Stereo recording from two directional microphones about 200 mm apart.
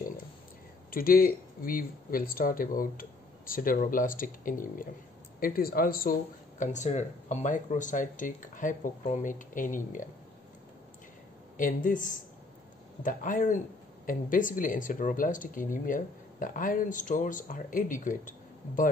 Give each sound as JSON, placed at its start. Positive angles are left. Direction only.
{"t": 0.9, "sound": "speech", "side_deg": 45}
{"t": 6.6, "sound": "speech", "side_deg": 35}
{"t": 11.5, "sound": "speech", "side_deg": 40}